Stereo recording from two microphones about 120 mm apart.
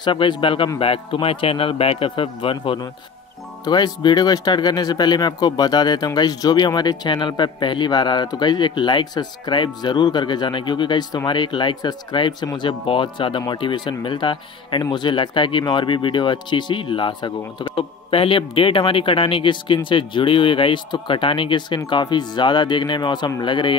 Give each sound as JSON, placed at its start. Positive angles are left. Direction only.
{"t": 0.0, "sound": "speech", "side_deg": 45}